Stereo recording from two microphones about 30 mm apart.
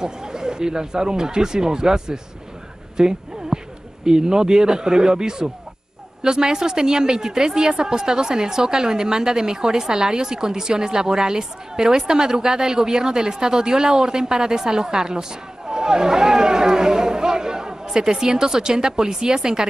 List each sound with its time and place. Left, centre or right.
0.0 s speech: right